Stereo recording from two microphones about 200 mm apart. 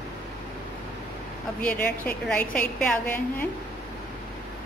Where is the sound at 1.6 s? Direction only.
10° left (ahead or behind).